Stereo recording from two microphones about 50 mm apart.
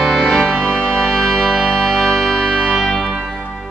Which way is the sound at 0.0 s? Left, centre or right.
Centre.